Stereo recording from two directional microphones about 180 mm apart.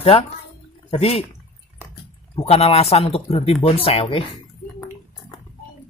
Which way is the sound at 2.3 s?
35° left (ahead or behind).